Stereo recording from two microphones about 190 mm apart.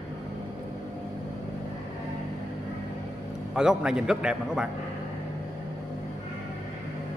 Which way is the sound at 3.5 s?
5° right (ahead or behind).